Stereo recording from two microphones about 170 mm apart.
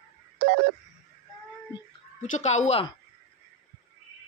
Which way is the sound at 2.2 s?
45° left (ahead or behind).